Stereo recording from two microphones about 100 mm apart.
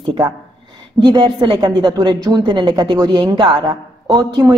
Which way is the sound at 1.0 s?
45° right (ahead or behind).